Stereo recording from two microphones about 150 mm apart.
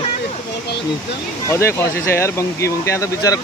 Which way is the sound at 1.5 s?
20° left (ahead or behind).